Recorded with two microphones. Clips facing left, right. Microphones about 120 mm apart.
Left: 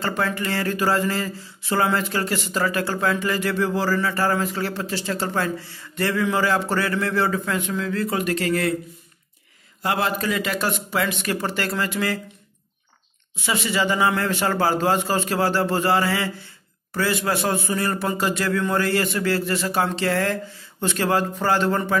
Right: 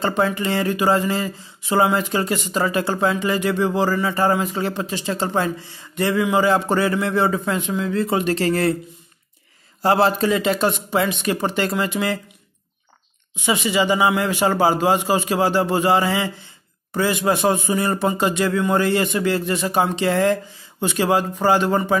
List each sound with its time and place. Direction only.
0.0 s speech: 20° right (ahead or behind)
9.8 s speech: 35° right (ahead or behind)
13.4 s speech: 15° right (ahead or behind)